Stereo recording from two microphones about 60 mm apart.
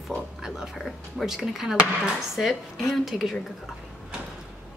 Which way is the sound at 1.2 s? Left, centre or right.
Centre.